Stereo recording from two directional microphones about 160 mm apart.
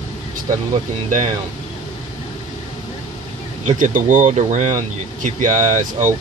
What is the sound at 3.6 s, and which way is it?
Speech, 50° right (ahead or behind).